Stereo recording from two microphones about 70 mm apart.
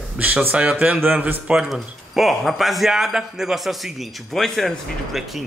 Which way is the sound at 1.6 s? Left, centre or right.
Centre.